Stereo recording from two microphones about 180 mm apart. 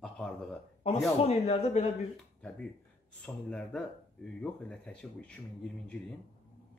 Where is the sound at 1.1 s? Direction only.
35° left (ahead or behind).